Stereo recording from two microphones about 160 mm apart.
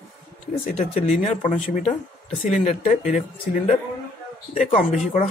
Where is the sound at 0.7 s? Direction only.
45° left (ahead or behind).